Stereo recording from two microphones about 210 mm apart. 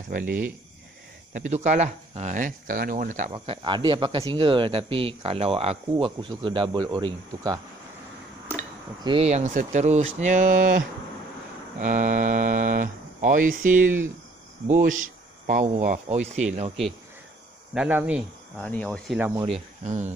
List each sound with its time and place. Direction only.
1.3 s speech: 35° right (ahead or behind)
3.3 s speech: 25° right (ahead or behind)
9.0 s speech: 25° right (ahead or behind)
11.8 s speech: 35° right (ahead or behind)
13.7 s speech: 10° right (ahead or behind)
14.7 s speech: 40° right (ahead or behind)
17.7 s speech: 5° right (ahead or behind)
18.6 s speech: 5° left (ahead or behind)
19.4 s speech: 30° right (ahead or behind)